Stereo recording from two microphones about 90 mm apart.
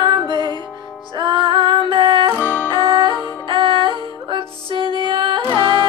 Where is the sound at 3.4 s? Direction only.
70° right (ahead or behind).